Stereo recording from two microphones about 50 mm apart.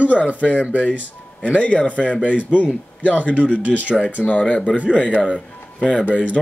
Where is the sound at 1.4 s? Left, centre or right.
Left.